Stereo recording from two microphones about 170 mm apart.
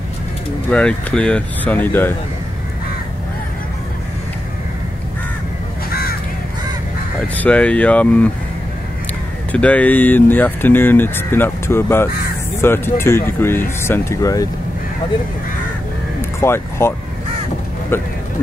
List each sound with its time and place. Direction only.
0.7 s speech: 5° left (ahead or behind)
5.9 s crow: 60° left (ahead or behind)
7.3 s speech: 5° left (ahead or behind)
9.5 s speech: 10° left (ahead or behind)
16.2 s vehicle: 15° left (ahead or behind)